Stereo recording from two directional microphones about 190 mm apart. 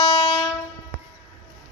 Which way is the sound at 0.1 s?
30° left (ahead or behind).